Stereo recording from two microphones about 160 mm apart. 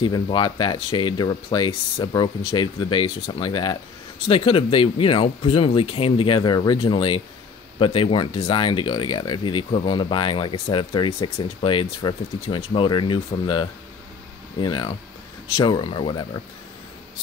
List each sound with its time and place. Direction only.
0.0 s speech: 30° left (ahead or behind)